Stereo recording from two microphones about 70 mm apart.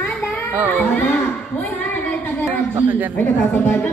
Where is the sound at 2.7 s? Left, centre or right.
Right.